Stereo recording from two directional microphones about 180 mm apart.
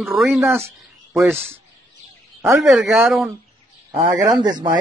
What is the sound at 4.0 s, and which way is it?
Speech, 20° right (ahead or behind).